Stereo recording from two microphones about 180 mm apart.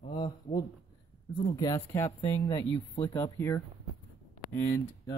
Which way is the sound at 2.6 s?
25° left (ahead or behind).